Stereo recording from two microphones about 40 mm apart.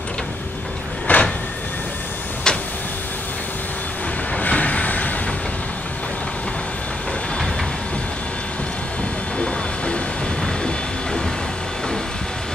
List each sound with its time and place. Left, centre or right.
1.1 s a sound: left
2.4 s vehicle: left
4.4 s train: left